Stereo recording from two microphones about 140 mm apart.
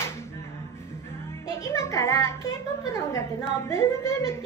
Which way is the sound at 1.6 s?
20° left (ahead or behind).